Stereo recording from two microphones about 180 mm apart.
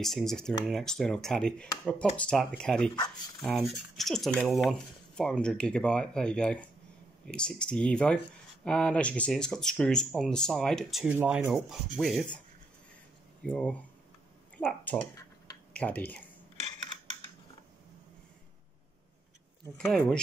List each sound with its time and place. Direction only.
0.0 s speech: centre (ahead or behind)
13.4 s speech: 10° left (ahead or behind)
19.9 s speech: 5° left (ahead or behind)